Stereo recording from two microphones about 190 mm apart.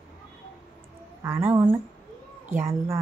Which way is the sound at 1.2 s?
10° right (ahead or behind).